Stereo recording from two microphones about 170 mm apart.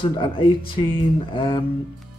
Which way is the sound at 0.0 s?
30° left (ahead or behind).